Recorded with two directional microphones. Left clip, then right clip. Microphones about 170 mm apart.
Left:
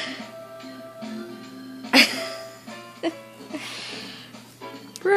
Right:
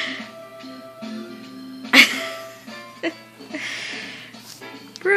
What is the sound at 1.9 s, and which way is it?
Music, centre (ahead or behind).